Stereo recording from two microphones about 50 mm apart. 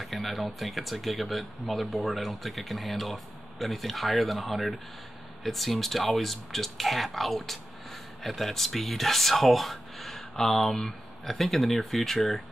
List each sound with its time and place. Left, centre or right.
0.0 s speech: centre